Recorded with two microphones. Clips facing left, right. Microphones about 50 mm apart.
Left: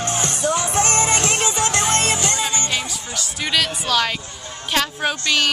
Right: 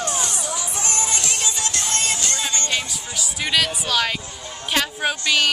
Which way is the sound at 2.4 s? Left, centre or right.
Centre.